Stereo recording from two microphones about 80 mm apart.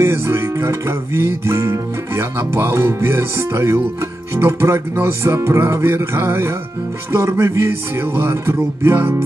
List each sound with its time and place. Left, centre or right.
0.0 s music: right